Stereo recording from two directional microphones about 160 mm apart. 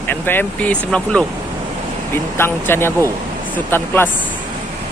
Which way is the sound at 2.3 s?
15° left (ahead or behind).